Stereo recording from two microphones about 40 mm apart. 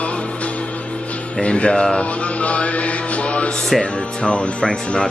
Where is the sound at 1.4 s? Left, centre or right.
Left.